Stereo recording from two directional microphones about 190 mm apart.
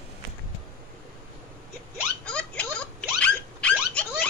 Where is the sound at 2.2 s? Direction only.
5° left (ahead or behind).